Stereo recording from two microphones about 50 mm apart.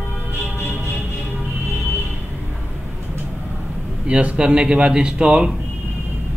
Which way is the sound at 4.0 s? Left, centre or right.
Right.